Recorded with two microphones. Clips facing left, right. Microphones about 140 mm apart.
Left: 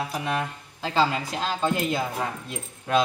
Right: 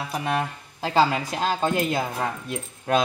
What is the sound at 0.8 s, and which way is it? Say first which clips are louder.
A man's voice: right 3 dB; 50° right (ahead or behind).